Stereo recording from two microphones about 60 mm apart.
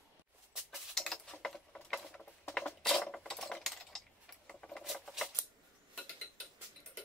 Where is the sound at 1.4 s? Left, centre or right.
Centre.